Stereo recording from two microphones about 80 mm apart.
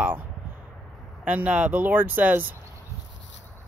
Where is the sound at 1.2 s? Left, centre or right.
Centre.